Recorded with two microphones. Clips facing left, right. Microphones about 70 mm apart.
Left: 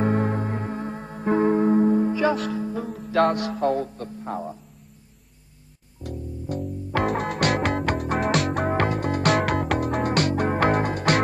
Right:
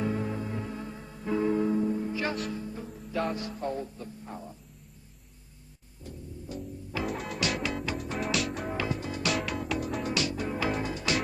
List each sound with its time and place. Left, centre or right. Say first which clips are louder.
0.0 s music: left 8 dB; left
2.4 s music: left 9 dB; left
6.5 s music: left 10 dB; left